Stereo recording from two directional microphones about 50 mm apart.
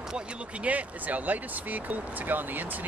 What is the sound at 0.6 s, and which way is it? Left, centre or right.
Speech, right.